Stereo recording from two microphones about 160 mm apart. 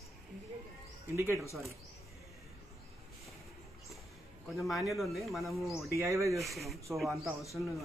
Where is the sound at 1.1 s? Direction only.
15° right (ahead or behind).